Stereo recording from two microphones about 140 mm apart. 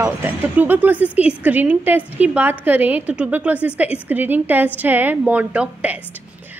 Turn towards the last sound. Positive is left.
turn(degrees=-10)  # may be behind; listen again after turning